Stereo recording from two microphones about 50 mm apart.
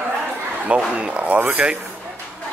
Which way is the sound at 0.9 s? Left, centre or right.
Right.